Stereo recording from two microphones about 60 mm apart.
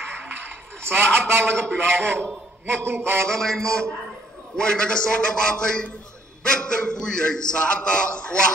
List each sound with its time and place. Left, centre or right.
0.4 s a sound: right
1.5 s a man's voice: right
2.6 s mantra: right
3.3 s a man's voice: centre